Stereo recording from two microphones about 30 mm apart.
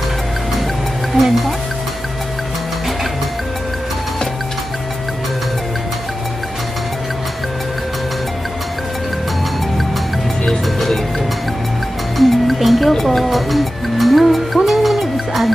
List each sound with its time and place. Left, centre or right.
1.1 s speech: centre
12.2 s music: centre